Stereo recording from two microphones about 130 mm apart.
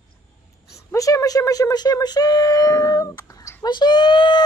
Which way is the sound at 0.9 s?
25° left (ahead or behind).